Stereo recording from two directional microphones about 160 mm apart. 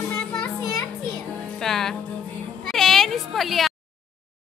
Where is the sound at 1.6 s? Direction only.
5° left (ahead or behind).